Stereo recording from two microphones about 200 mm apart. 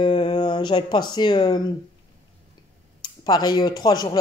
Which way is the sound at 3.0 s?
20° left (ahead or behind).